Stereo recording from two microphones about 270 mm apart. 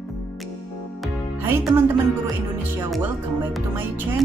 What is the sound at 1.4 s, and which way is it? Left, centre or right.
Speech, centre.